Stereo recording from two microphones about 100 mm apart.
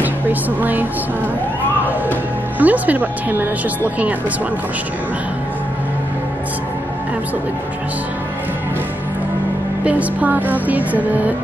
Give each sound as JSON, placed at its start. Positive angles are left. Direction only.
{"t": 0.0, "sound": "speech", "side_deg": -15}
{"t": 2.6, "sound": "music", "side_deg": -15}
{"t": 9.8, "sound": "music", "side_deg": -15}